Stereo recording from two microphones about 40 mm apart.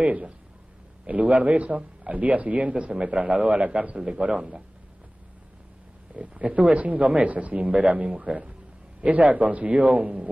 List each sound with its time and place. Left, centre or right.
0.0 s speech: right
3.7 s a man's voice: right
6.1 s a man's voice: right